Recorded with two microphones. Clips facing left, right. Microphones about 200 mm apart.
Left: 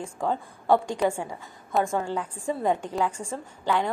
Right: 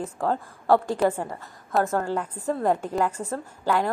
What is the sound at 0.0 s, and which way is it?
A woman's voice, centre (ahead or behind).